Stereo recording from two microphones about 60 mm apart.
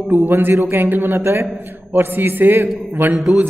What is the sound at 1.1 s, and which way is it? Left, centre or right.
Speech, right.